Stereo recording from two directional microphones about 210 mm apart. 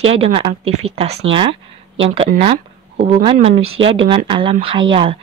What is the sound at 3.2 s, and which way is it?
Speech, 25° right (ahead or behind).